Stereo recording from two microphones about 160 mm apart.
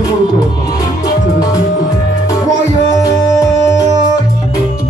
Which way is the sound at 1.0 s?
25° left (ahead or behind).